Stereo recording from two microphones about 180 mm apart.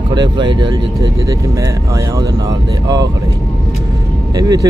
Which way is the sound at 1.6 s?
20° right (ahead or behind).